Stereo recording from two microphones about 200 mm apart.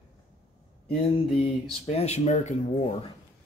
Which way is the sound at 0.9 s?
30° left (ahead or behind).